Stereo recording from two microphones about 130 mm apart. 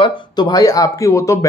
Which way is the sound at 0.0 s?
30° left (ahead or behind).